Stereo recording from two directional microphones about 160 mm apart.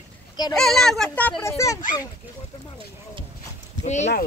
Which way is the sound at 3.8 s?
45° left (ahead or behind).